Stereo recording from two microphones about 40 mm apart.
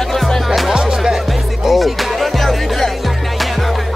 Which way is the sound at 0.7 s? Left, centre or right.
Centre.